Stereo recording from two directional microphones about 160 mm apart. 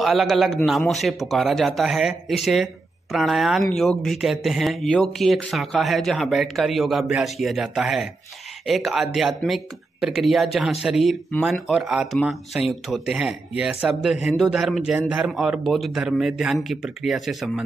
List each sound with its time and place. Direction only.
0.0 s a man's voice: centre (ahead or behind)